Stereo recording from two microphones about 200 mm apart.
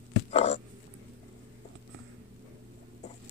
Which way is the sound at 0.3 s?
30° left (ahead or behind).